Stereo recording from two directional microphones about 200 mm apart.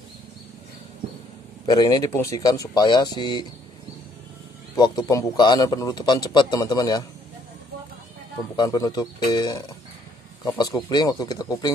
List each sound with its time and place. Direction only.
1.7 s a man's voice: 20° left (ahead or behind)
4.7 s a man's voice: 20° left (ahead or behind)
8.5 s a man's voice: 20° left (ahead or behind)